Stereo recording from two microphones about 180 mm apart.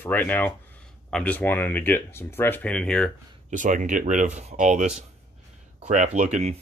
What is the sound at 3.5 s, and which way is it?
Speech, 45° right (ahead or behind).